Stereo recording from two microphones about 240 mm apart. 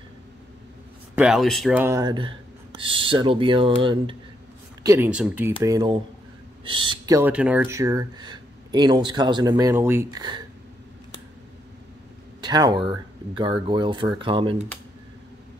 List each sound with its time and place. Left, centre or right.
1.1 s speech: centre; by 4.2 s right
4.8 s speech: centre
12.4 s speech: centre